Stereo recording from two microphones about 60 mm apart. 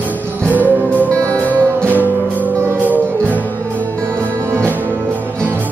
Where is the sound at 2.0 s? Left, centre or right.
Left.